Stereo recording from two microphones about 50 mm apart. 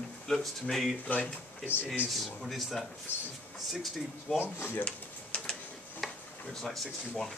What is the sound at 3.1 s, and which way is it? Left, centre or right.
Speech, left.